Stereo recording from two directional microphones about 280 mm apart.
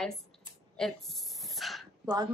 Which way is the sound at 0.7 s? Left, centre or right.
Centre.